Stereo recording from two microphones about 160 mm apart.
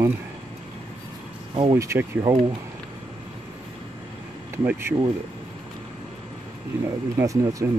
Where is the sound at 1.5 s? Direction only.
30° right (ahead or behind).